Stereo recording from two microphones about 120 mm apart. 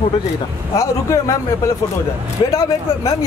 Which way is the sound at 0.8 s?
25° left (ahead or behind).